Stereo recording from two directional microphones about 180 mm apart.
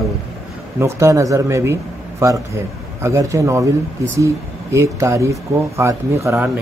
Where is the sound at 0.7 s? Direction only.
15° right (ahead or behind).